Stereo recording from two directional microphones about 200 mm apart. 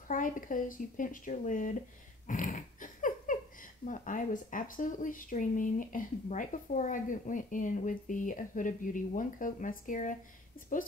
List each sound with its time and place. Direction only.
0.1 s speech: 40° left (ahead or behind)
2.2 s dog: 40° left (ahead or behind)
3.8 s speech: 40° left (ahead or behind)